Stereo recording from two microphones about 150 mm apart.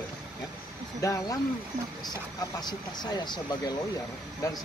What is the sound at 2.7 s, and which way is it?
Speech, 25° left (ahead or behind).